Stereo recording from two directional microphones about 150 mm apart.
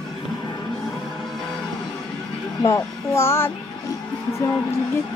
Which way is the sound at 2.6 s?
20° left (ahead or behind).